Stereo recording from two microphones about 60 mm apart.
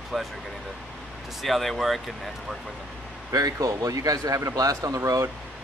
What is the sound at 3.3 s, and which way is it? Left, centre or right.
A man's voice, right.